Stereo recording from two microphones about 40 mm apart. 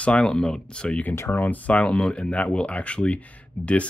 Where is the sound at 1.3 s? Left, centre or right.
Left.